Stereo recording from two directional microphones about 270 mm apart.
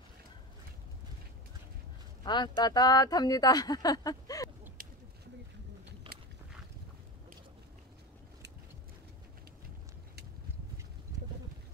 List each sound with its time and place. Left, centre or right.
2.2 s speech: centre
4.8 s a sound: right
6.0 s boat: centre